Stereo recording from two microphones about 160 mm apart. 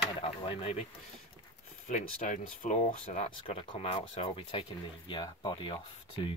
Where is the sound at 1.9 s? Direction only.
50° left (ahead or behind); by 5.8 s 30° left (ahead or behind).